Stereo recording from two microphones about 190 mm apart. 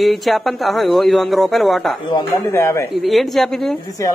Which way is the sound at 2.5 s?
15° left (ahead or behind).